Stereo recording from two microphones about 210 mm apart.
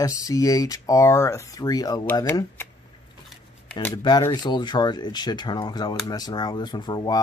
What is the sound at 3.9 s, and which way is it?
Speech, 20° left (ahead or behind).